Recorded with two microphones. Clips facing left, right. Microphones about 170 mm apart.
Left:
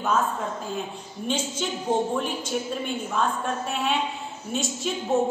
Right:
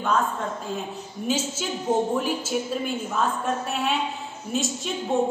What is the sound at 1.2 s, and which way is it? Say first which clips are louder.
Speech: right 1 dB; 5° right (ahead or behind).